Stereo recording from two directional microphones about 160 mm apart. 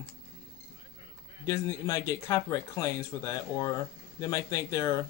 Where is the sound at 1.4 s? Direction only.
20° left (ahead or behind).